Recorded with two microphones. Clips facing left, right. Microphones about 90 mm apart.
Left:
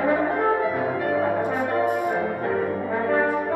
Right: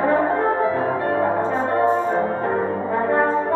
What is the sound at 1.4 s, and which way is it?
Brass instrument, 15° left (ahead or behind).